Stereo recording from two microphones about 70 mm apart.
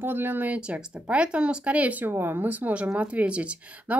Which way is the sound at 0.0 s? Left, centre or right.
Right.